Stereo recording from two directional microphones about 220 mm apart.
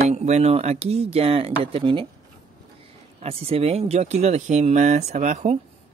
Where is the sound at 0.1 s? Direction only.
30° right (ahead or behind).